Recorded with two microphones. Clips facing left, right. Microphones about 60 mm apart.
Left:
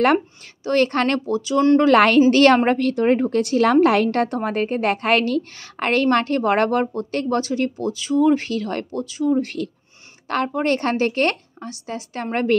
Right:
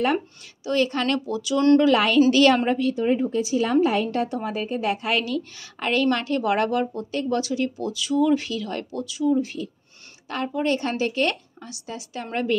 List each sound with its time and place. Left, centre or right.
0.7 s a woman's voice: left
1.8 s a woman's voice: left
7.3 s a woman's voice: left